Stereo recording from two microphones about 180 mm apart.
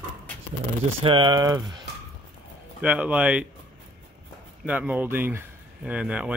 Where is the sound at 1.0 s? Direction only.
25° right (ahead or behind).